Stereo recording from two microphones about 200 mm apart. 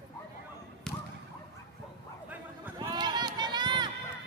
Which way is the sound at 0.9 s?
5° left (ahead or behind).